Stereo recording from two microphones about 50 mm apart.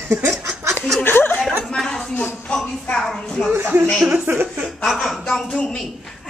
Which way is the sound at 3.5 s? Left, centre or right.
Right.